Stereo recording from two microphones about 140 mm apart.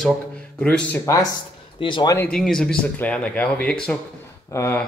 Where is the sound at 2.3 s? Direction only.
5° left (ahead or behind).